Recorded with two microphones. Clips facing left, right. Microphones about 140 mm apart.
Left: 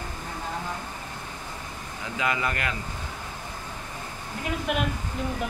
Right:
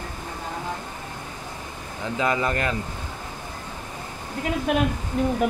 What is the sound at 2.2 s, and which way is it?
Speech, 35° right (ahead or behind).